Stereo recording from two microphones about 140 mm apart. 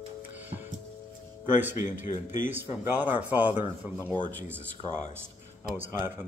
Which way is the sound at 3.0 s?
10° right (ahead or behind).